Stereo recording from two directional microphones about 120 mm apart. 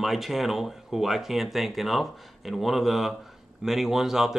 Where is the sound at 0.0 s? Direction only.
Centre (ahead or behind).